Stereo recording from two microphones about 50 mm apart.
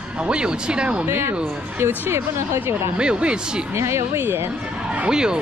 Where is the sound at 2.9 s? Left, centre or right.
Centre.